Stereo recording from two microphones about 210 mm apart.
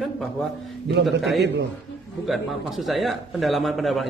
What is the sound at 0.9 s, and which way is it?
Speech, 55° right (ahead or behind).